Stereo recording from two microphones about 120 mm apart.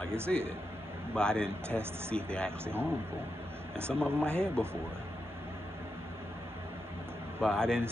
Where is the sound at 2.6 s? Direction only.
20° right (ahead or behind).